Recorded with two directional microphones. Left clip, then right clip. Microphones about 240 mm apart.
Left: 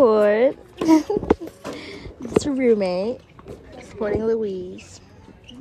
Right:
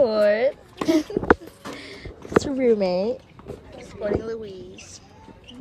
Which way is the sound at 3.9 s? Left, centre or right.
Centre.